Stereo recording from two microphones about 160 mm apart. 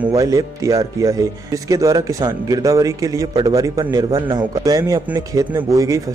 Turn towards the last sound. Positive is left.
turn(degrees=-20)  # may be behind; listen again after turning